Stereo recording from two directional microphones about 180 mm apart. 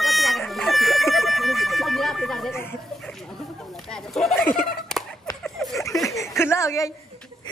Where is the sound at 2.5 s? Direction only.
15° left (ahead or behind).